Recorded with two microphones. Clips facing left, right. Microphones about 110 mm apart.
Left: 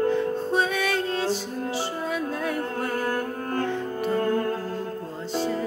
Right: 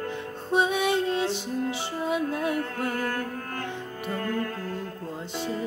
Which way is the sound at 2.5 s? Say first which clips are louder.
Left 1 dB; 20° left (ahead or behind).